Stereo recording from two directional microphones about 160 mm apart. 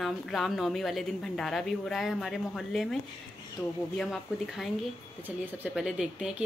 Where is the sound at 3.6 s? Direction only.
25° left (ahead or behind).